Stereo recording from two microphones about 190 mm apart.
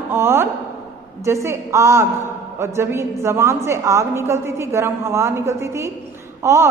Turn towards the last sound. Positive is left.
turn(degrees=-15)  # may be behind; listen again after turning